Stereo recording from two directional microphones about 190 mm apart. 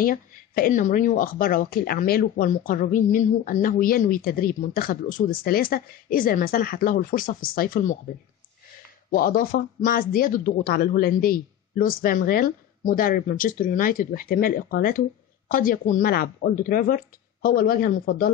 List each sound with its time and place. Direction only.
0.0 s speech: 50° left (ahead or behind)
9.1 s speech: 50° left (ahead or behind)